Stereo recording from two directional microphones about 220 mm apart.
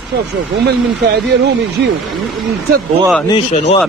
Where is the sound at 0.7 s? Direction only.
50° right (ahead or behind).